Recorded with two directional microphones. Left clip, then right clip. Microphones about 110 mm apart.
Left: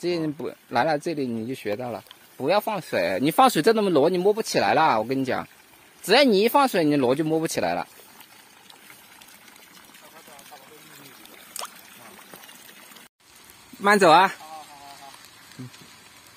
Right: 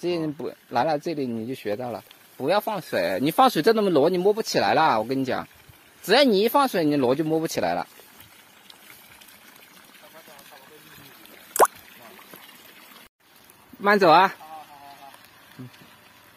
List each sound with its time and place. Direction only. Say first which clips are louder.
0.0 s speech: even; centre (ahead or behind)
2.4 s speech: left 1 dB; centre (ahead or behind)
3.3 s speech: left 1 dB; 15° left (ahead or behind)
3.8 s a man's voice: even; 15° right (ahead or behind)
4.2 s speech: even; centre (ahead or behind)
13.8 s speech: left 1 dB; 15° left (ahead or behind)